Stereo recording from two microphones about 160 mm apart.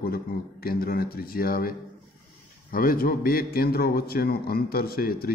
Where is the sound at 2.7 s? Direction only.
65° left (ahead or behind).